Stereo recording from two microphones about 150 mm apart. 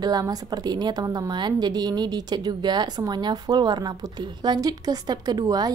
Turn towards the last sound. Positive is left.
turn(degrees=-25)  # may be behind; listen again after turning